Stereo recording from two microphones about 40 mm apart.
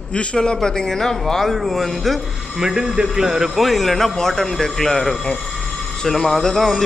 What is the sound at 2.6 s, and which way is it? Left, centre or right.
Speech, centre.